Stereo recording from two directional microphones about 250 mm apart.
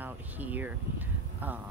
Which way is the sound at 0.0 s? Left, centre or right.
Centre.